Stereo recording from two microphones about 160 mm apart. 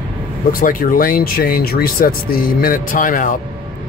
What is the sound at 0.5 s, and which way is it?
Speech, 60° left (ahead or behind).